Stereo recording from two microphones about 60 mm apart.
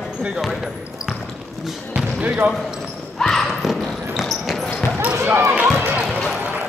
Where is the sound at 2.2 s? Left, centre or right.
Right.